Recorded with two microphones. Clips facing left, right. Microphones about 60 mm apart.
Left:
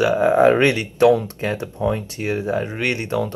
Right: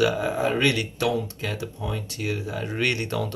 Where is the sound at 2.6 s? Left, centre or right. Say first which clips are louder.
Left 3 dB; left.